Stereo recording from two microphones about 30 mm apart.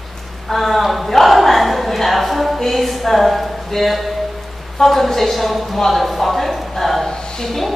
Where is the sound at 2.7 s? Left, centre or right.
Centre.